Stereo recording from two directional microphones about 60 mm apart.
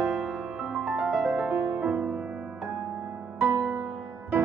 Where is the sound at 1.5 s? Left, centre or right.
Right.